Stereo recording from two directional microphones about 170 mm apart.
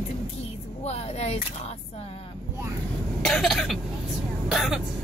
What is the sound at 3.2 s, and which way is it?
Speech, centre (ahead or behind).